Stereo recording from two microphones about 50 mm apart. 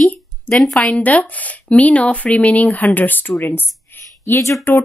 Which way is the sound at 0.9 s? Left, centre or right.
Left.